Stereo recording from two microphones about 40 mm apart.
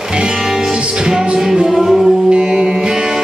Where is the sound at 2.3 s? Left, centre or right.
Right.